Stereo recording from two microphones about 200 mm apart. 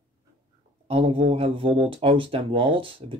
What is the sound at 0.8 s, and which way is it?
Speech, 30° right (ahead or behind).